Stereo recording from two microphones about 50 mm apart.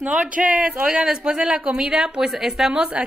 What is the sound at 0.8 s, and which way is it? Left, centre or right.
Speech, centre.